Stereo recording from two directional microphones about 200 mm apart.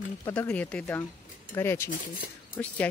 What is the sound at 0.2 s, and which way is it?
Speech, 10° left (ahead or behind).